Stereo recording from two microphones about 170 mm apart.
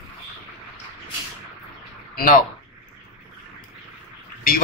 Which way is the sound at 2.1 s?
55° left (ahead or behind).